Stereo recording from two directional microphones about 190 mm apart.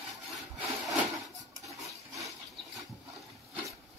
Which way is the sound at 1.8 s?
15° right (ahead or behind).